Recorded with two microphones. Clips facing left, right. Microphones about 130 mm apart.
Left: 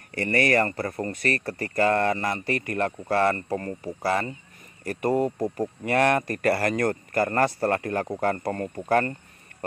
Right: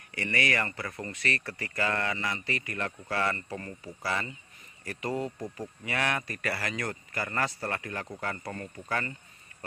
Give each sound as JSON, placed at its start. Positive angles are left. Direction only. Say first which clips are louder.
{"t": 0.1, "sound": "speech", "louder": "left 8 dB", "side_deg": 45}